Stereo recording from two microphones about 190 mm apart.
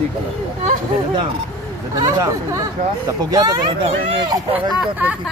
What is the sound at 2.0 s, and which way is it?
Speech, 15° right (ahead or behind).